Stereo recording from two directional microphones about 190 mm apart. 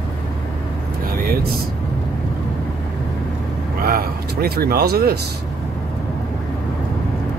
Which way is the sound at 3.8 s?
55° right (ahead or behind).